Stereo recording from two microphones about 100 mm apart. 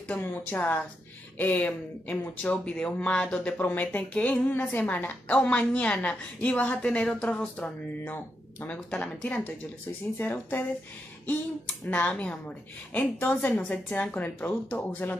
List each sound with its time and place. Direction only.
0.1 s speech: 20° left (ahead or behind)